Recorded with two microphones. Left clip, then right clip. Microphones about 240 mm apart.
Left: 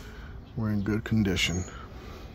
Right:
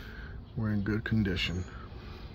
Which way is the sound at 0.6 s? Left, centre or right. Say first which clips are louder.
Left 3 dB; centre.